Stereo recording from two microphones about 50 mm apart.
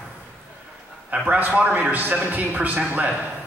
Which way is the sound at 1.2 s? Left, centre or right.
Right.